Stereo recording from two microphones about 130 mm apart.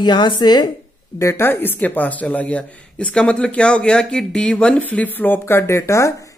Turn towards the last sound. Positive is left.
turn(degrees=25)  # may be behind; listen again after turning